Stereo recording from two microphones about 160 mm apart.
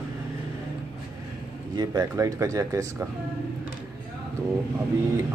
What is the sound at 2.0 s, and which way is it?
Speech, 15° right (ahead or behind).